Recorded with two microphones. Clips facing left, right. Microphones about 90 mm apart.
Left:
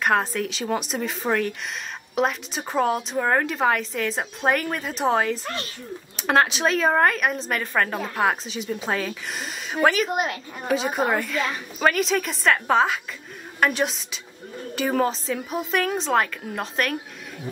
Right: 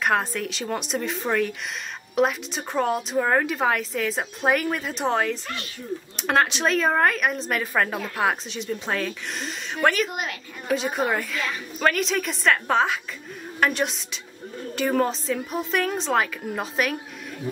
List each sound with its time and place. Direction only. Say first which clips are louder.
0.0 s a woman's voice: left 1 dB; centre (ahead or behind)
10.0 s a woman's voice: left 6 dB; 40° left (ahead or behind)
10.7 s a woman's voice: left 1 dB; centre (ahead or behind)